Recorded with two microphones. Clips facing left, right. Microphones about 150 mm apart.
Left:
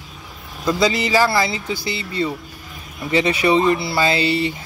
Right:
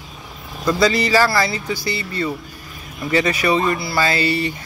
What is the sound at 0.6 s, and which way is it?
Speech, 15° left (ahead or behind).